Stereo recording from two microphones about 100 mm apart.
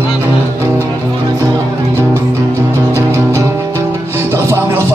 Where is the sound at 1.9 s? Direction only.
25° right (ahead or behind).